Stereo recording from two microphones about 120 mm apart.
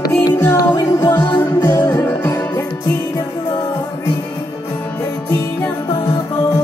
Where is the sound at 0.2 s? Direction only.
30° left (ahead or behind).